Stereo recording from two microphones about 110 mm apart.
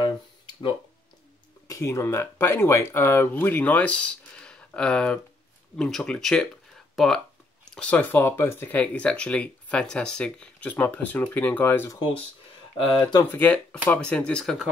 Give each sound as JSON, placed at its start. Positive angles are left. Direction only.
{"t": 1.7, "sound": "speech", "side_deg": 25}
{"t": 12.7, "sound": "speech", "side_deg": 45}
{"t": 13.2, "sound": "speech", "side_deg": 15}